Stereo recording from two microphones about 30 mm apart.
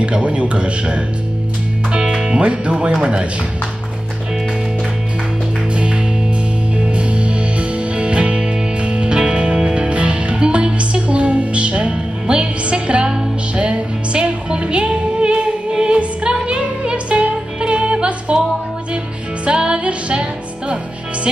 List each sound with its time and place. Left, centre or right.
0.0 s speech: right
1.9 s music: right
2.4 s speech: right
3.0 s speech: right
6.9 s music: right
19.4 s music: right